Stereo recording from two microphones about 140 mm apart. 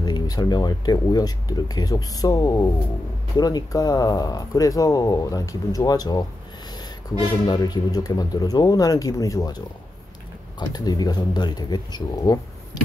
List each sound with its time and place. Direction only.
0.0 s speech: 30° left (ahead or behind)
7.4 s speech: 30° left (ahead or behind)
10.6 s speech: 30° left (ahead or behind)